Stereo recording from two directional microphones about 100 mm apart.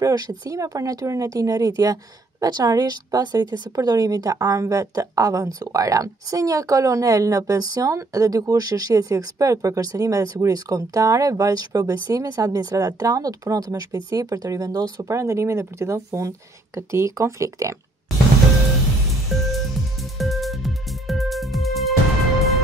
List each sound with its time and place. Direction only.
0.0 s speech: 40° right (ahead or behind)
19.3 s music: centre (ahead or behind)